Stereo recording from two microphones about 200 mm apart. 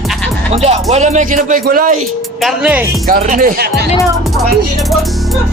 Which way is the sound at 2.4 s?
5° right (ahead or behind).